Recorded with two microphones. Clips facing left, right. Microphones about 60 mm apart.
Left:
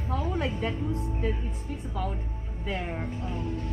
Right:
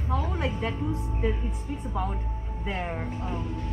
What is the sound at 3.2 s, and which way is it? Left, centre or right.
Speech, centre.